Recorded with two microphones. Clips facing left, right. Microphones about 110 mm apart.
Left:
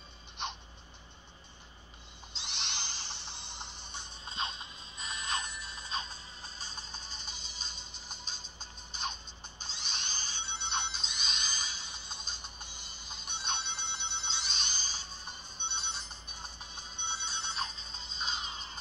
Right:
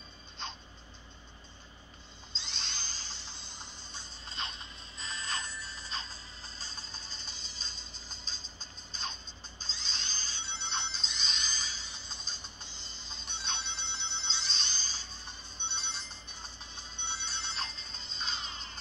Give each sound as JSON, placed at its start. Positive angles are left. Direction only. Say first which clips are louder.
{"t": 0.4, "sound": "a sound", "louder": "left 3 dB", "side_deg": 20}
{"t": 2.3, "sound": "a sound", "louder": "left 3 dB", "side_deg": 20}
{"t": 4.3, "sound": "music", "louder": "left 3 dB", "side_deg": 20}
{"t": 9.6, "sound": "a sound", "louder": "left 2 dB", "side_deg": 20}
{"t": 10.1, "sound": "music", "louder": "left 2 dB", "side_deg": 20}
{"t": 13.4, "sound": "ringtone", "louder": "left 3 dB", "side_deg": 50}
{"t": 13.9, "sound": "ringtone", "louder": "even", "side_deg": 15}
{"t": 15.2, "sound": "music", "louder": "left 1 dB", "side_deg": 15}
{"t": 15.9, "sound": "music", "louder": "left 1 dB", "side_deg": 50}
{"t": 16.3, "sound": "music", "louder": "left 1 dB", "side_deg": 10}